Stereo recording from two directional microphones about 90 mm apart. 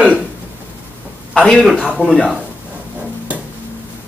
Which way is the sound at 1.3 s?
10° left (ahead or behind).